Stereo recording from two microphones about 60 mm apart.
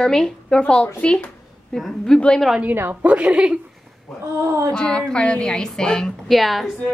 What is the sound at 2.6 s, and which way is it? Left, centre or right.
Speech, right.